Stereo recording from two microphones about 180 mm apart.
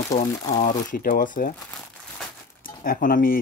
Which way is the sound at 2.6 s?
50° left (ahead or behind).